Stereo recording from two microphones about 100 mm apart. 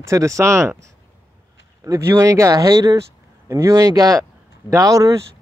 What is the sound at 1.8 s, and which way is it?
Speech, 30° right (ahead or behind).